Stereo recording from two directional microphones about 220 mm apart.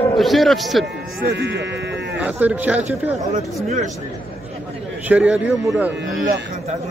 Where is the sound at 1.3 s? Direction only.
55° right (ahead or behind).